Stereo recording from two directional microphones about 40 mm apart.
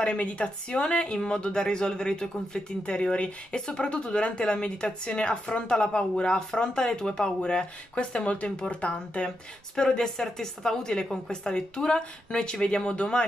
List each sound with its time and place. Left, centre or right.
0.0 s speech: left
9.8 s speech: centre